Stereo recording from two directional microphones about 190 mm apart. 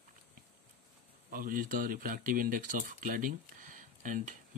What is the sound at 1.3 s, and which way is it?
Speech, 45° right (ahead or behind).